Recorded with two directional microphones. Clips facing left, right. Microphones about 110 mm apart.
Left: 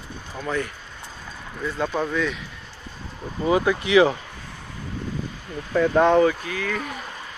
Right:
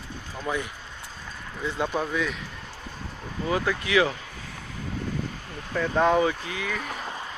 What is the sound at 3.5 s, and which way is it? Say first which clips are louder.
Speech: left 6 dB; 15° left (ahead or behind).